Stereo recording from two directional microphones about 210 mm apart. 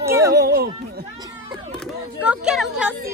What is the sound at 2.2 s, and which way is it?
Speech, 5° right (ahead or behind).